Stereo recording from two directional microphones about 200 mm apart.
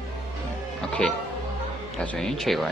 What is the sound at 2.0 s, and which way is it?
Speech, 5° left (ahead or behind).